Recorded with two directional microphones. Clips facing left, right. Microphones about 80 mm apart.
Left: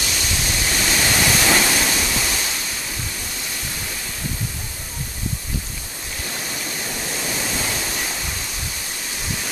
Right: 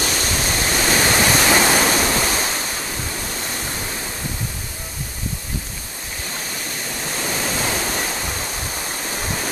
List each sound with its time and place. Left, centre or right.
0.0 s pink noise: right
7.4 s waterfall: right
9.1 s waterfall: right